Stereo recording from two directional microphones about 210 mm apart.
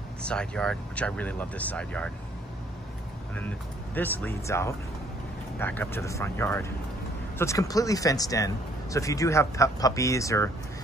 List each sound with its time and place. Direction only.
0.2 s speech: 5° left (ahead or behind)
3.3 s speech: 10° left (ahead or behind)